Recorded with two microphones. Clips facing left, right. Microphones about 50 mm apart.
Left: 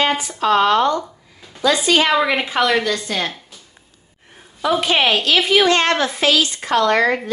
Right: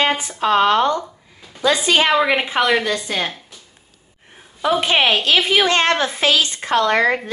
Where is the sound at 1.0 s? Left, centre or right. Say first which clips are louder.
Even; centre.